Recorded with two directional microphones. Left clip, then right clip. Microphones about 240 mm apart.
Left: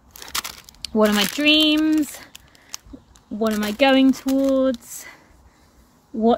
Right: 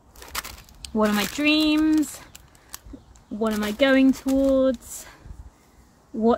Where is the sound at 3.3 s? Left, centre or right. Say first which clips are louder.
Left 3 dB; left.